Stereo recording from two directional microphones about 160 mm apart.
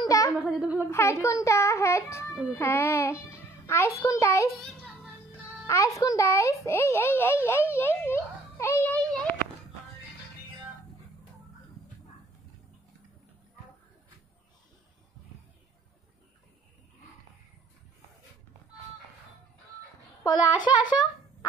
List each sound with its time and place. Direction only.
0.3 s speech: 5° right (ahead or behind)
0.8 s a child's voice: 15° left (ahead or behind)
3.3 s music: 15° left (ahead or behind)
4.0 s a child's voice: 20° left (ahead or behind)
5.9 s a child's voice: 20° left (ahead or behind)
20.2 s a child's voice: 25° left (ahead or behind)